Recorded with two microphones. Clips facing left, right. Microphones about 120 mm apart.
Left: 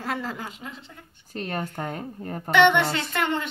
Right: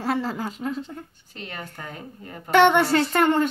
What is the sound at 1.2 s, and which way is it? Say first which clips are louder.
A woman's voice: left 11 dB; 45° left (ahead or behind).